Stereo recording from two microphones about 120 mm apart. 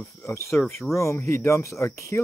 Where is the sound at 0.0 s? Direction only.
25° left (ahead or behind).